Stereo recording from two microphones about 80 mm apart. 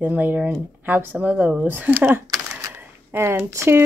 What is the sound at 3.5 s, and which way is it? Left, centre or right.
Speech, right.